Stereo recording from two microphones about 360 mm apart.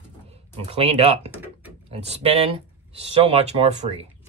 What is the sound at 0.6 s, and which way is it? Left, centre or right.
Speech, centre.